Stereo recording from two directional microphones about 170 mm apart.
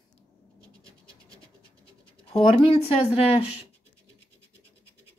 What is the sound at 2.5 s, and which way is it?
Speech, 35° left (ahead or behind).